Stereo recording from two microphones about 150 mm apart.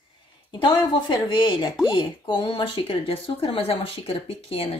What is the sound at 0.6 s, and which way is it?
Speech, 30° left (ahead or behind).